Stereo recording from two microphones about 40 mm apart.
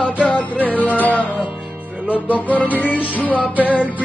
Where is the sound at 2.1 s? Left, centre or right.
Left.